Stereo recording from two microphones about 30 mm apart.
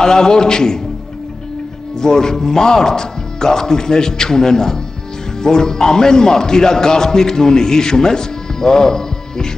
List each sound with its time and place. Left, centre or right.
0.0 s a man's voice: left
2.0 s a man's voice: left